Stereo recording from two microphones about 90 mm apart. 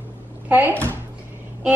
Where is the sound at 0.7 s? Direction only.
15° left (ahead or behind).